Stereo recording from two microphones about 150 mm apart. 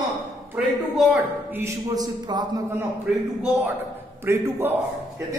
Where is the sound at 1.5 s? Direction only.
20° right (ahead or behind).